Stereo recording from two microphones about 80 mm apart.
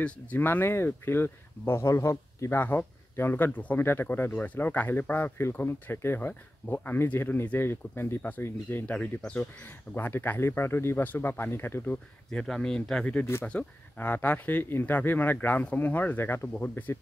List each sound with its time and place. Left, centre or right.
0.0 s speech: left
2.6 s speech: left
12.3 s speech: centre
13.2 s speech: left